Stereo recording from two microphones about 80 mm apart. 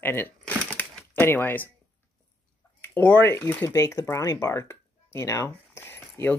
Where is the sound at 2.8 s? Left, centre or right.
Left.